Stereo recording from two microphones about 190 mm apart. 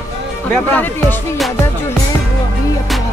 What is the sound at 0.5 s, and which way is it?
Speech, 10° left (ahead or behind).